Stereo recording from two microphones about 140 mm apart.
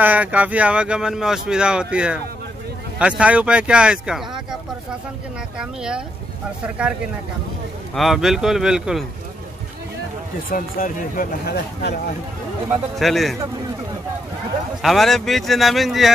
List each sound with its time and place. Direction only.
0.0 s speech: 10° right (ahead or behind)
5.6 s speech: 5° right (ahead or behind)
7.9 s speech: centre (ahead or behind)
10.5 s speech: 85° left
12.9 s speech: centre (ahead or behind)
14.8 s speech: centre (ahead or behind)